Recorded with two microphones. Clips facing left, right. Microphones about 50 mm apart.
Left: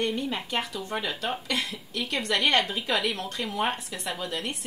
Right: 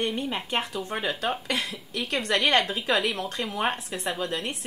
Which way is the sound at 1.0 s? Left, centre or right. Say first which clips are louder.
Right 2 dB; right.